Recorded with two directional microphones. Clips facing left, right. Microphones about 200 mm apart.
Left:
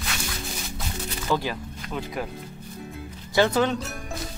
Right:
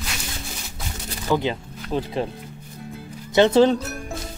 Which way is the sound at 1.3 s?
20° right (ahead or behind).